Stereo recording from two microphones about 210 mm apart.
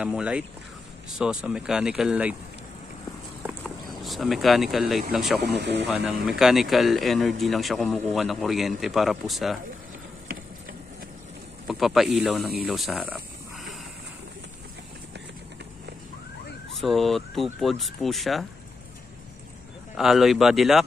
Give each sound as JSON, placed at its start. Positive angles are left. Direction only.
{"t": 0.0, "sound": "speech", "side_deg": -5}
{"t": 3.4, "sound": "a sound", "side_deg": 0}
{"t": 5.1, "sound": "speech", "side_deg": 0}
{"t": 5.4, "sound": "speech", "side_deg": -55}
{"t": 5.9, "sound": "speech", "side_deg": 0}
{"t": 11.6, "sound": "speech", "side_deg": 0}
{"t": 16.7, "sound": "speech", "side_deg": 0}
{"t": 20.0, "sound": "speech", "side_deg": 0}